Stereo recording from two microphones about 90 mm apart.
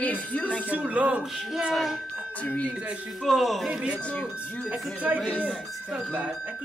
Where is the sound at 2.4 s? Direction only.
15° left (ahead or behind).